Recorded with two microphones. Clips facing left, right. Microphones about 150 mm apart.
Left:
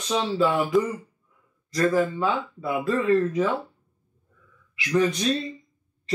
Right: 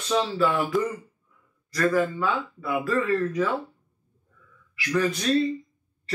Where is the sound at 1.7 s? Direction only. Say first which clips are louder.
Left 1 dB; 20° left (ahead or behind).